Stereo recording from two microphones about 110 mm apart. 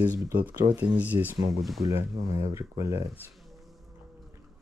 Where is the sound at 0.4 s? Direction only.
15° right (ahead or behind).